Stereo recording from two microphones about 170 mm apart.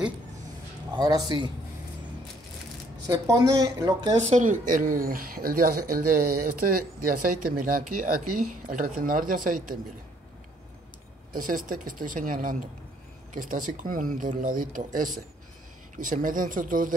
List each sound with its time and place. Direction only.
0.9 s speech: 25° right (ahead or behind)
3.1 s speech: 20° right (ahead or behind)
4.3 s speech: 50° right (ahead or behind)
11.3 s speech: 55° right (ahead or behind)